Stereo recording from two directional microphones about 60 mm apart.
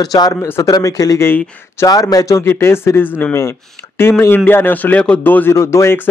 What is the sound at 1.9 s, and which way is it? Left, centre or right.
Speech, left.